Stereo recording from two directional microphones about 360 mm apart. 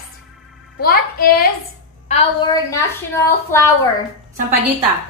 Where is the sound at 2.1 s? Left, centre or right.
Centre.